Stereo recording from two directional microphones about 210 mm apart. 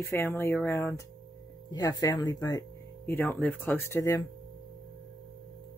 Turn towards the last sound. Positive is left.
turn(degrees=15)  # may be behind; listen again after turning